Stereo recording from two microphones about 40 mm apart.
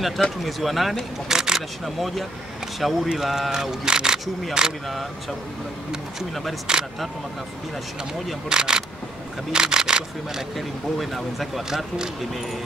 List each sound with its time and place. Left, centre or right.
0.4 s speech: centre
1.3 s speech: centre
2.0 s speech: centre
3.8 s speech: centre
6.7 s speech: centre
8.5 s speech: centre
11.0 s speech: centre